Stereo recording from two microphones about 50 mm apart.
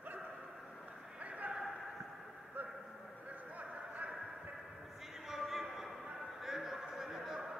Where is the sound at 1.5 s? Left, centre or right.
Centre.